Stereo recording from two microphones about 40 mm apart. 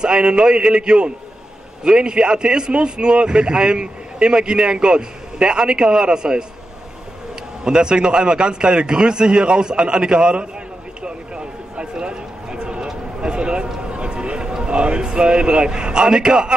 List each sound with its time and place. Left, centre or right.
0.0 s a man's voice: right
7.6 s a man's voice: right
11.0 s a sound: right
14.5 s a man's voice: right